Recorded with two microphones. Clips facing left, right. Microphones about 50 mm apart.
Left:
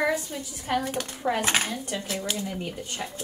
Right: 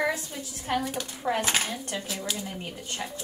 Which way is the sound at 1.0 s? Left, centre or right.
Centre.